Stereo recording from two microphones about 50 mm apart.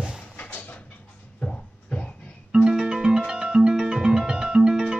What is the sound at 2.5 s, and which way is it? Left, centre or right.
Music, centre.